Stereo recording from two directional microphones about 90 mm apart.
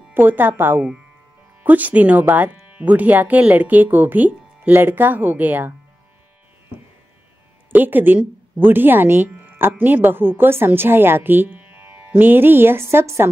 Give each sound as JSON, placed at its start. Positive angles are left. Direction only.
{"t": 0.1, "sound": "a woman's voice", "side_deg": -20}
{"t": 7.7, "sound": "a woman's voice", "side_deg": -20}